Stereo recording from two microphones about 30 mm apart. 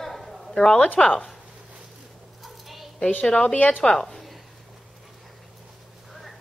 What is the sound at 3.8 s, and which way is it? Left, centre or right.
Speech, left.